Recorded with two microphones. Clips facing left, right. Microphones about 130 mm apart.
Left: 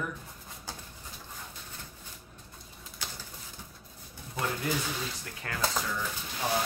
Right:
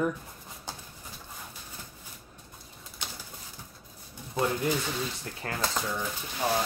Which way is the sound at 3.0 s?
20° right (ahead or behind).